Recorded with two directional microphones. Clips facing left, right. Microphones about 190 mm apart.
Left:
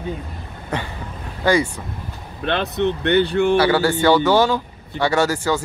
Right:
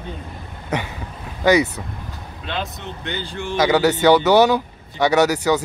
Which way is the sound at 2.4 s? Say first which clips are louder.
Left 9 dB; 60° left (ahead or behind).